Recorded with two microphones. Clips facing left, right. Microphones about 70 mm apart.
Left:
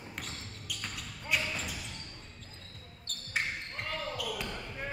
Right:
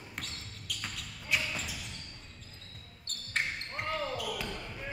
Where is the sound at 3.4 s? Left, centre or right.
Centre.